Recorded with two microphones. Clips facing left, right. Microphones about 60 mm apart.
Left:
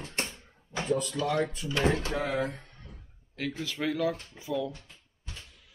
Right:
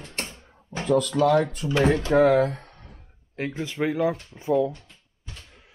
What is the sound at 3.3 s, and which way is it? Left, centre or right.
Speech, right.